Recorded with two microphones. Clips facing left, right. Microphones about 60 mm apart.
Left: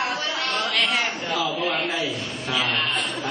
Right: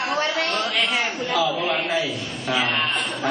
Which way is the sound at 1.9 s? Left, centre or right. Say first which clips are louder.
Right 2 dB; right.